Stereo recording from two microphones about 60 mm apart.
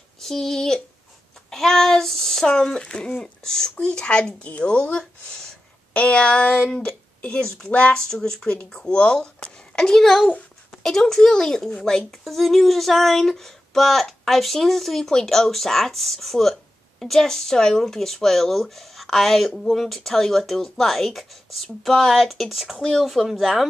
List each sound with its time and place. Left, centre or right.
0.2 s speech: centre; by 4.7 s left
4.9 s speech: centre
8.0 s a child's voice: centre